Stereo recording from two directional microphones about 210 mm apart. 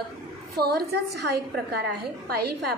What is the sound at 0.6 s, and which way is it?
A woman's voice, 50° right (ahead or behind).